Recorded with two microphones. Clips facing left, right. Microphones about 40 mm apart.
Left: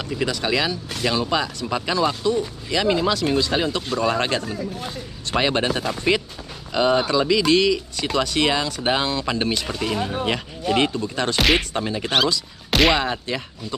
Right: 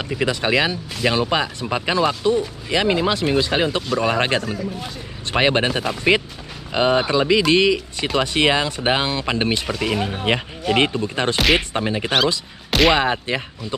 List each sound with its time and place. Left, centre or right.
0.0 s speech: right
11.3 s speech: centre
11.7 s speech: right